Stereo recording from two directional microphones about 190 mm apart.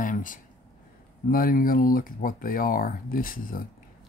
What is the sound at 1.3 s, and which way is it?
Speech, 45° left (ahead or behind).